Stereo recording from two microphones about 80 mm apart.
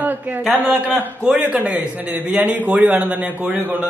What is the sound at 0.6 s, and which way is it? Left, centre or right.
Speech, right.